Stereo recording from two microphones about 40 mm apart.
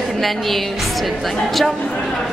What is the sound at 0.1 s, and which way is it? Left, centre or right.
A woman's voice, centre.